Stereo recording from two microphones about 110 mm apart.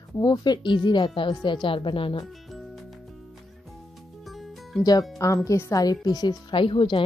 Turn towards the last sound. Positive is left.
turn(degrees=50)  # may be behind; listen again after turning